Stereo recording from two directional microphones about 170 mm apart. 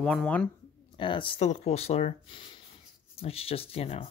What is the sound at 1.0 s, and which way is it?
Speech, 30° left (ahead or behind).